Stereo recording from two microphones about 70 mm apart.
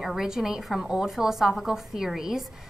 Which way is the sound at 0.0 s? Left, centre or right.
Centre.